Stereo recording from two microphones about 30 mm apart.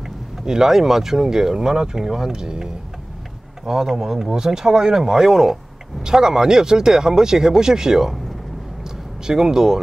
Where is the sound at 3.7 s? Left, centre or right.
Centre.